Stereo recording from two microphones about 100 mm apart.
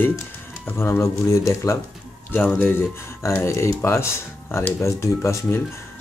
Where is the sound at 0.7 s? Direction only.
25° left (ahead or behind).